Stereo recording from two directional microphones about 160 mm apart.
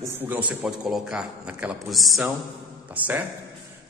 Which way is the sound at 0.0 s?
15° right (ahead or behind).